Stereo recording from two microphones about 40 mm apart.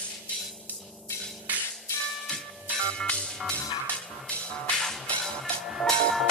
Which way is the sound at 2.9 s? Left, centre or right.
Left.